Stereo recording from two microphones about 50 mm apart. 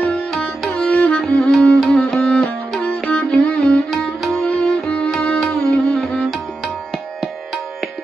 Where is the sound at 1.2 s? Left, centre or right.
Centre.